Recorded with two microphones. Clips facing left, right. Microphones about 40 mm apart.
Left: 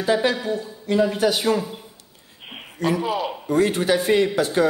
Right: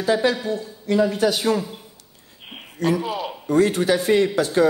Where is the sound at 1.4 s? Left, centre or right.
Centre.